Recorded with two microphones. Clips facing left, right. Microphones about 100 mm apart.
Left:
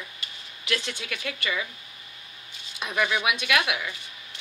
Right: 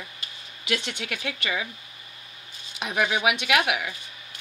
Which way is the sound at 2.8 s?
60° right (ahead or behind).